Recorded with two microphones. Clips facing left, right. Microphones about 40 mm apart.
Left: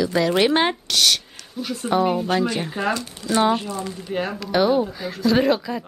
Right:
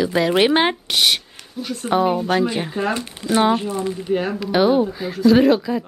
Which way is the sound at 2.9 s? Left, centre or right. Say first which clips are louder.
Right 2 dB; right.